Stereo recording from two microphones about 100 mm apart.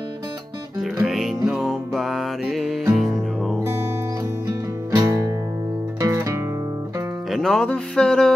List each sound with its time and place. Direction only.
1.0 s music: centre (ahead or behind)
5.0 s music: 35° right (ahead or behind)
7.2 s speech: centre (ahead or behind)